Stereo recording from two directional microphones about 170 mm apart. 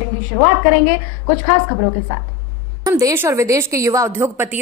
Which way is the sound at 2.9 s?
20° right (ahead or behind).